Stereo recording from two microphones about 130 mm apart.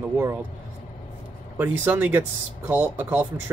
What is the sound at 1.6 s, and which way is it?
Speech, 15° right (ahead or behind).